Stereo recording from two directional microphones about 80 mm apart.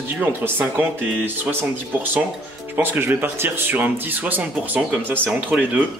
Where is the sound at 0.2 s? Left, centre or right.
Right.